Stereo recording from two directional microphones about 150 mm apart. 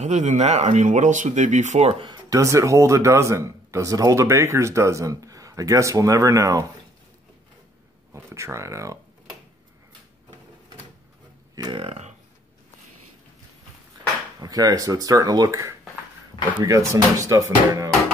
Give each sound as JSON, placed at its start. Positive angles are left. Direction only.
{"t": 0.0, "sound": "speech", "side_deg": -50}
{"t": 2.0, "sound": "a man's voice", "side_deg": -25}
{"t": 8.1, "sound": "a man's voice", "side_deg": -20}
{"t": 11.5, "sound": "speech", "side_deg": -30}
{"t": 14.4, "sound": "a man's voice", "side_deg": -25}